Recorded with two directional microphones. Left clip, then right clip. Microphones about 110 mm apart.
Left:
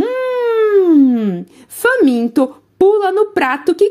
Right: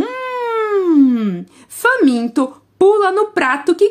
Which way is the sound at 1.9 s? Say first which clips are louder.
Left 1 dB; 30° left (ahead or behind).